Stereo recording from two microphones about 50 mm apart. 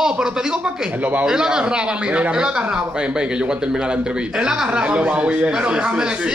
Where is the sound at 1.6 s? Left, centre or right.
Right.